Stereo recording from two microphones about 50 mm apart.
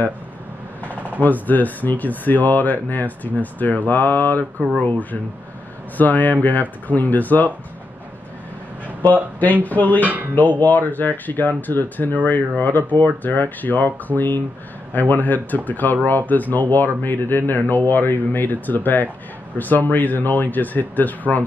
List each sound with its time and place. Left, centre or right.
1.2 s speech: left
5.9 s speech: left
9.4 s speech: left
10.0 s speech: right
10.6 s speech: left